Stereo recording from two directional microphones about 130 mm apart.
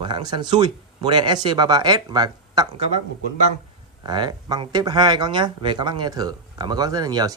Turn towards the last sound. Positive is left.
turn(degrees=-30)  # may be behind; listen again after turning